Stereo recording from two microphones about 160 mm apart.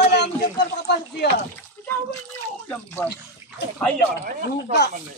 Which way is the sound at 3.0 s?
15° left (ahead or behind).